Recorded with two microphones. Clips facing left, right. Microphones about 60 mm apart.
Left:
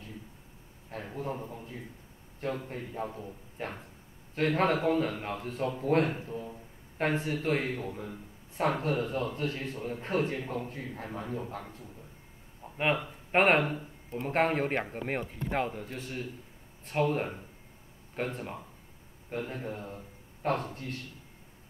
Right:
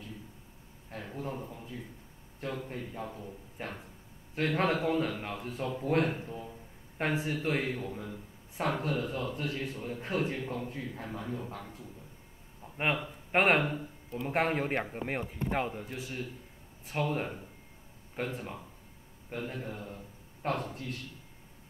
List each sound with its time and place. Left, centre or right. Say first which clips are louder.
1.1 s speech: left 2 dB; left
4.4 s speech: left 2 dB; left
12.6 s a sound: left 3 dB; left
13.4 s speech: left 2 dB; left
14.7 s speech: left 1 dB; centre
15.6 s a man's voice: left 2 dB; right
15.9 s speech: left 1 dB; left